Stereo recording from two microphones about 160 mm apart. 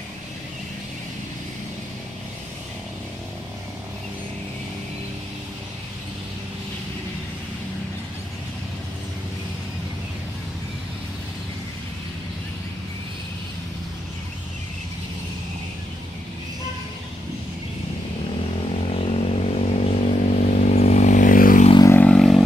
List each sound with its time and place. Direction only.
18.7 s vehicle: 40° left (ahead or behind); by 21.6 s 60° left (ahead or behind)
21.7 s vehicle: 20° left (ahead or behind)
22.0 s vehicle: 5° left (ahead or behind)